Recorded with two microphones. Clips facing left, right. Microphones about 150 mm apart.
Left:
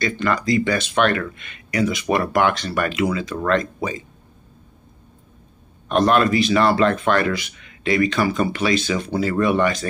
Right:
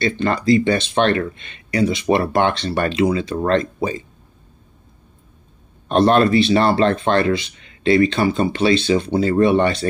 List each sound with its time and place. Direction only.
0.0 s speech: 30° right (ahead or behind)
5.9 s speech: 30° right (ahead or behind)